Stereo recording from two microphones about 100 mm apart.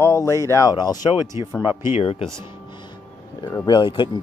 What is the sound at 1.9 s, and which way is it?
Speech, 90° left.